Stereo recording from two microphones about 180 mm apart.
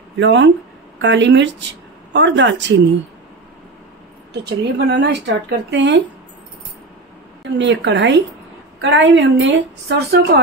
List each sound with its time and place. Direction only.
0.2 s a woman's voice: 85° right
4.3 s a woman's voice: 70° right (ahead or behind)
7.5 s a woman's voice: 80° right
8.8 s a woman's voice: 90° right; by 10.4 s 65° right (ahead or behind)